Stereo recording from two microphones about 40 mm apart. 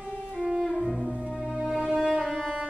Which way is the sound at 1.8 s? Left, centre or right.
Centre.